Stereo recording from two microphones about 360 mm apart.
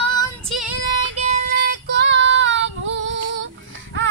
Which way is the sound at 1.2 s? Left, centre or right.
Right.